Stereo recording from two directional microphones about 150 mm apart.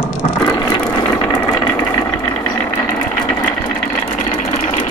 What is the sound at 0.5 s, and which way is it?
Ratchet, 25° left (ahead or behind).